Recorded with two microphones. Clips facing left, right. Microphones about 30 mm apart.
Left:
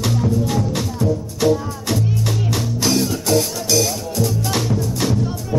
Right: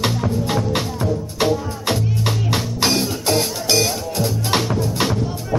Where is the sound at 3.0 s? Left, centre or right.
Centre.